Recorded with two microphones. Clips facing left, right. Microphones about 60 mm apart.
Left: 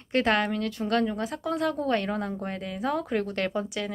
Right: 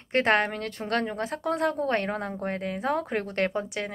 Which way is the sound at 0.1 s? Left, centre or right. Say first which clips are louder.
Right 1 dB; right.